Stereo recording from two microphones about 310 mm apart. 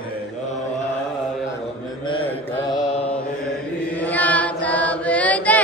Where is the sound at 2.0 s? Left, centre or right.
Centre.